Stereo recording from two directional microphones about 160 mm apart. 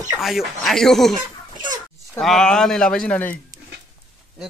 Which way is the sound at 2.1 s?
5° left (ahead or behind).